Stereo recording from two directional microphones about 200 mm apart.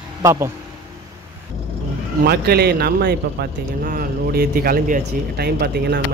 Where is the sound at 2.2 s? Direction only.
50° right (ahead or behind).